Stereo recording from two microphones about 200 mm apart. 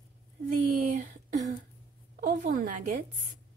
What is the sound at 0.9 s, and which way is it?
A woman's voice, 40° right (ahead or behind).